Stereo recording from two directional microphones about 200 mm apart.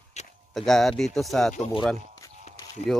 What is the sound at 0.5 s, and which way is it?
Speech, centre (ahead or behind).